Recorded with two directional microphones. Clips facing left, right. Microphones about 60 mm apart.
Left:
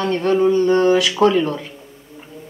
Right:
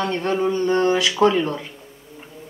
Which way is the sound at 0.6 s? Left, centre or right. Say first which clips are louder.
Left 4 dB; left.